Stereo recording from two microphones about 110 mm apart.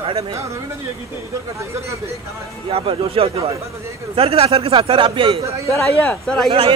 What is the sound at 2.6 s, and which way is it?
A man's voice, 60° right (ahead or behind).